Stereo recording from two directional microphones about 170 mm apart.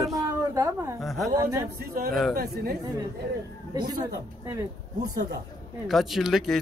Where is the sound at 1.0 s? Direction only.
Centre (ahead or behind).